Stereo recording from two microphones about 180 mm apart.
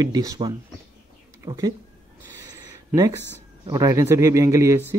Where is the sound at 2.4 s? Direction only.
20° right (ahead or behind).